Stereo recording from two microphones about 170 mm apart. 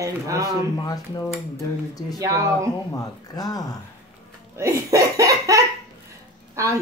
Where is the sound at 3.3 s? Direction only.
20° left (ahead or behind).